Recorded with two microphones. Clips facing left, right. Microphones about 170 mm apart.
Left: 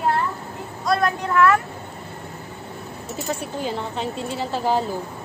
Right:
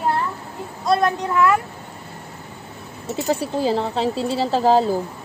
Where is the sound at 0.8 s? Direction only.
25° right (ahead or behind).